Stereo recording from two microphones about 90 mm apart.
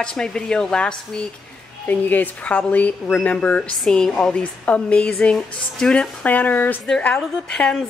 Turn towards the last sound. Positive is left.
turn(degrees=5)  # may be behind; listen again after turning